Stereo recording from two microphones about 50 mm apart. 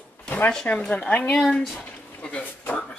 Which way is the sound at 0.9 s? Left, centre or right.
Left.